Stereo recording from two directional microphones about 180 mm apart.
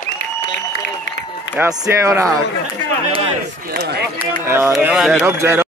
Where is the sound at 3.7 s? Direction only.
65° right (ahead or behind).